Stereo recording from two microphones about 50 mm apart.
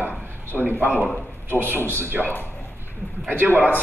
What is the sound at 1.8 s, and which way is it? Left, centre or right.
Speech, left.